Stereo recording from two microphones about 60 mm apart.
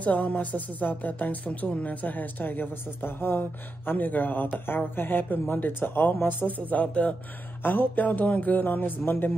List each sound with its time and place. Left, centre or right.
0.0 s a woman's voice: left
7.6 s a woman's voice: left